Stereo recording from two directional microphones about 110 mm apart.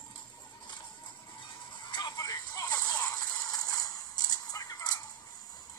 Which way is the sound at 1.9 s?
40° left (ahead or behind).